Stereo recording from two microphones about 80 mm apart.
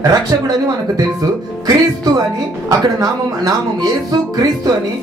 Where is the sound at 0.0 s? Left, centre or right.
Right.